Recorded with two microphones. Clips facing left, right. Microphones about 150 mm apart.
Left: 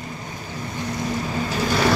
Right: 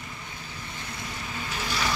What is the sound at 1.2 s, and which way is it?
Vehicle, 45° left (ahead or behind).